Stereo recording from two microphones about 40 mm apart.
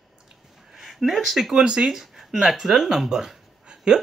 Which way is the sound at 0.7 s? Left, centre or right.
Centre.